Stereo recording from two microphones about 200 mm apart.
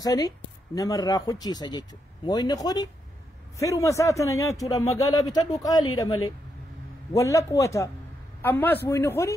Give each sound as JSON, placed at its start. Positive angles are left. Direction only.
{"t": 0.0, "sound": "a man's voice", "side_deg": 20}